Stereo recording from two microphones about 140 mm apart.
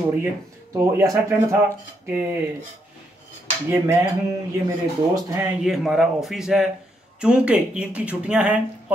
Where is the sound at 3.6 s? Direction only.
20° right (ahead or behind).